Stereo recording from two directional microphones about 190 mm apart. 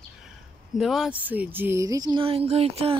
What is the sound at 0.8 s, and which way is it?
Speech, centre (ahead or behind).